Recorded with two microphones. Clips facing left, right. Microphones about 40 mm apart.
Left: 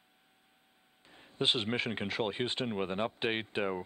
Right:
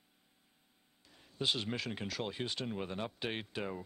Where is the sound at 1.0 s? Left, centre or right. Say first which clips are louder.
Left 4 dB; left.